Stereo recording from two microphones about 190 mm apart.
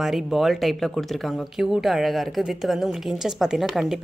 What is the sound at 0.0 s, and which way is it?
Speech, centre (ahead or behind).